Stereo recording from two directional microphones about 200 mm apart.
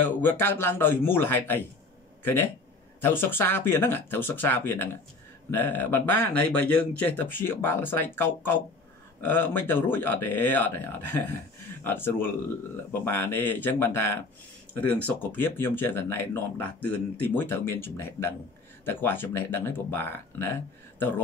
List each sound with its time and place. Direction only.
0.0 s speech: 10° left (ahead or behind)
3.0 s speech: 10° left (ahead or behind)